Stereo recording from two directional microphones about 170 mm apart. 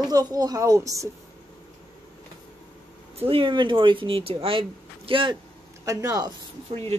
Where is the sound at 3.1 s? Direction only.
35° right (ahead or behind).